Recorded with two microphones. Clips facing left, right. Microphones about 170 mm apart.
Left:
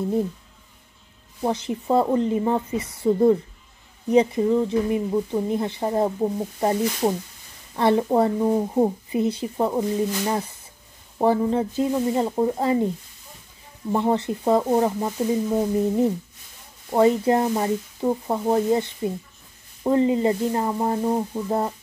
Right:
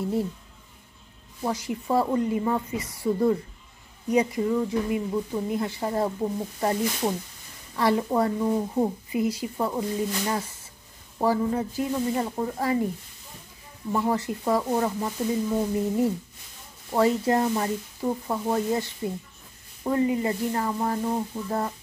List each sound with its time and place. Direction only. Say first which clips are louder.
0.0 s speech: left 3 dB; 20° left (ahead or behind)
1.4 s speech: left 4 dB; 25° left (ahead or behind)
13.9 s speech: left 4 dB; 25° left (ahead or behind)